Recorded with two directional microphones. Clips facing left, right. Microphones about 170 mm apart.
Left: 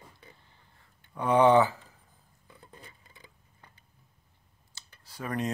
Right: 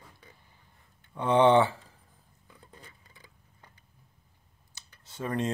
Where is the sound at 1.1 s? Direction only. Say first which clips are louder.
Even; 25° right (ahead or behind).